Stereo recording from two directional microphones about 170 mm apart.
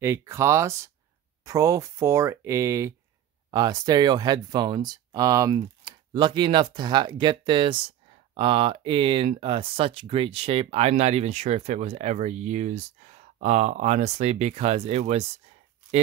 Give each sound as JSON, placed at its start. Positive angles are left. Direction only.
{"t": 0.0, "sound": "speech", "side_deg": -15}